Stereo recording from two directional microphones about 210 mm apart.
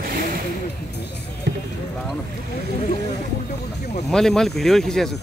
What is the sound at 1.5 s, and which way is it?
Basketball bounce, 55° right (ahead or behind).